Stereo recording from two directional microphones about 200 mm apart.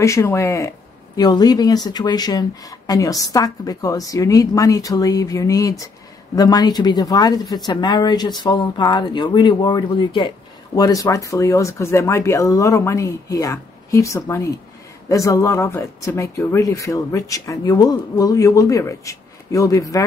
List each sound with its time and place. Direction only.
0.0 s speech: 15° left (ahead or behind)